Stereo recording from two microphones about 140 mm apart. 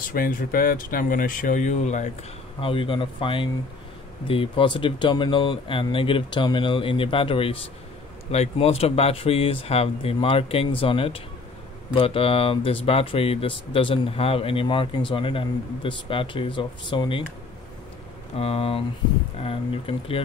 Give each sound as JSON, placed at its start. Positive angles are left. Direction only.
{"t": 0.0, "sound": "speech", "side_deg": 90}
{"t": 2.6, "sound": "speech", "side_deg": 40}
{"t": 18.4, "sound": "speech", "side_deg": 45}